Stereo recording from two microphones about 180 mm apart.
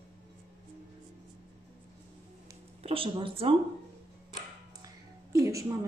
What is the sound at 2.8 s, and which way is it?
Speech, 30° right (ahead or behind).